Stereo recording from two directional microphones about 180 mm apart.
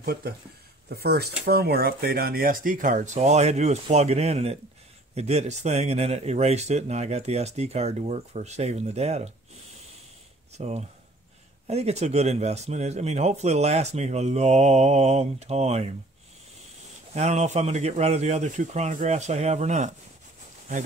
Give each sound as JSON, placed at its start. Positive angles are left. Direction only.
{"t": 0.0, "sound": "speech", "side_deg": -60}
{"t": 10.6, "sound": "speech", "side_deg": -40}
{"t": 17.1, "sound": "speech", "side_deg": -40}